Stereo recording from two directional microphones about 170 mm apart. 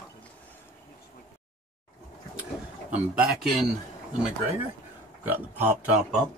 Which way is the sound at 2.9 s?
5° right (ahead or behind).